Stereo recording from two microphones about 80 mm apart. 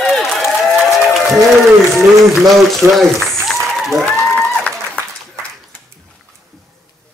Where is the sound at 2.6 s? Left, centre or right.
Centre.